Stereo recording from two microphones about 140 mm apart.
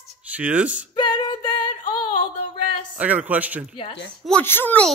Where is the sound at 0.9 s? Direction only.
35° left (ahead or behind).